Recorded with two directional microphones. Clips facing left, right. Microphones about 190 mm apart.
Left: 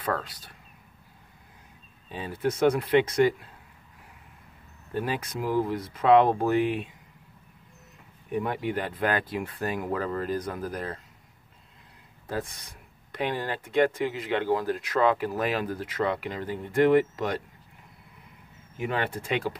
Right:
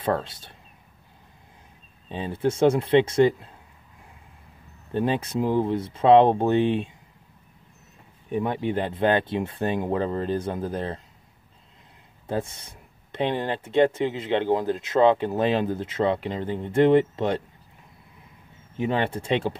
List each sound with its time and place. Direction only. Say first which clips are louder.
0.0 s speech: right 5 dB; 25° right (ahead or behind)
2.0 s speech: right 4 dB; 25° right (ahead or behind)
4.9 s speech: right 6 dB; 25° right (ahead or behind)
8.3 s speech: right 3 dB; 25° right (ahead or behind)
12.3 s speech: right 4 dB; 25° right (ahead or behind)
18.8 s speech: right 5 dB; 25° right (ahead or behind)